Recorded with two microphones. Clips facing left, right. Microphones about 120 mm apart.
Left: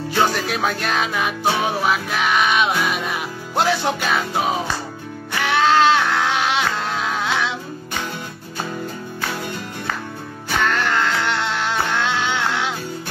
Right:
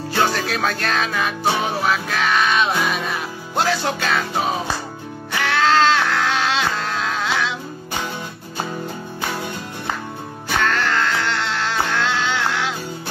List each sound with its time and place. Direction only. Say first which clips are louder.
0.2 s music: even; 10° left (ahead or behind)
5.4 s a sound: left 1 dB; 20° left (ahead or behind)
10.7 s music: even; 15° left (ahead or behind)